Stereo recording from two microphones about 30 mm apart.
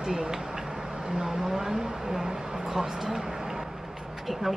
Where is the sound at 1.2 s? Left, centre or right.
Centre.